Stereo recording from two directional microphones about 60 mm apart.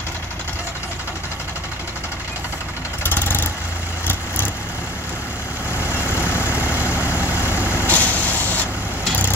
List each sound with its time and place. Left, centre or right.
3.0 s vehicle: left
6.2 s vehicle: left
7.9 s vehicle: left